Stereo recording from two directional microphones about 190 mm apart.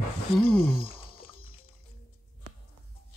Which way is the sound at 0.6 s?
30° left (ahead or behind).